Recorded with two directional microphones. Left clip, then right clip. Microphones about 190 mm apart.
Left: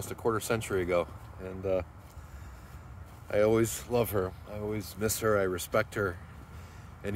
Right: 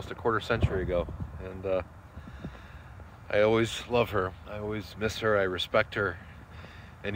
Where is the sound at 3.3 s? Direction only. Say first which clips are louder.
Right 2 dB; 10° left (ahead or behind).